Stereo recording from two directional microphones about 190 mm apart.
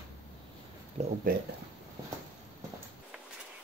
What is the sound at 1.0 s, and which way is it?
Speech, 35° right (ahead or behind).